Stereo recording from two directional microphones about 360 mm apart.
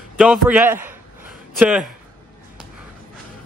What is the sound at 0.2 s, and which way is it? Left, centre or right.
A man's voice, centre.